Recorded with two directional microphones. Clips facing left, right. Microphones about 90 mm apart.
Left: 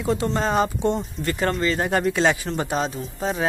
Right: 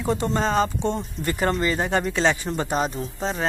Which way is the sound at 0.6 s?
10° left (ahead or behind).